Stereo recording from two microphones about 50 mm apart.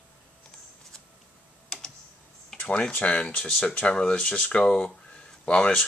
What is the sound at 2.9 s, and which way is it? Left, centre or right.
Speech, left.